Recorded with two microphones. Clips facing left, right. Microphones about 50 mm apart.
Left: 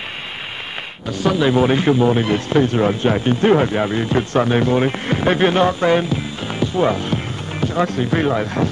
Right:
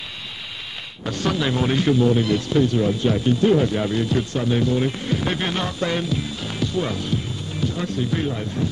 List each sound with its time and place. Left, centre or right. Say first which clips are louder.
1.1 s speech: left 7 dB; centre; by 4.3 s left
4.3 s speech: left 5 dB; left
7.6 s speech: left 6 dB; left
8.3 s speech: left 7 dB; left